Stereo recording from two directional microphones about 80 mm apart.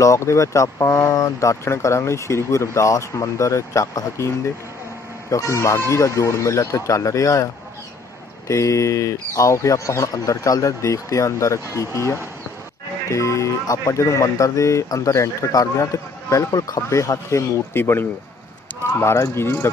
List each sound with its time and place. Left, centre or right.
0.0 s speech: left
5.3 s speech: left
8.5 s speech: left